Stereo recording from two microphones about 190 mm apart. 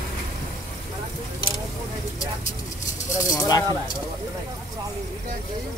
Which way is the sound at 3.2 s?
20° left (ahead or behind).